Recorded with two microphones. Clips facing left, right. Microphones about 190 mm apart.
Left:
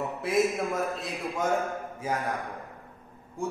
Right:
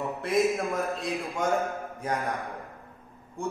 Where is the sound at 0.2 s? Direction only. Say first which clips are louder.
Right 1 dB; centre (ahead or behind).